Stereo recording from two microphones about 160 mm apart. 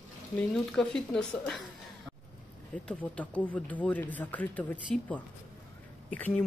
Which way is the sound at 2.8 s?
10° left (ahead or behind).